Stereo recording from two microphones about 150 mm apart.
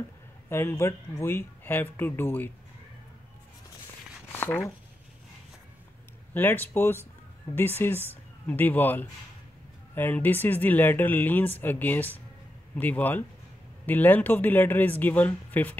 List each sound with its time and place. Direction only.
0.5 s speech: 15° left (ahead or behind)
4.3 s a sound: 15° left (ahead or behind)
6.3 s speech: 10° left (ahead or behind)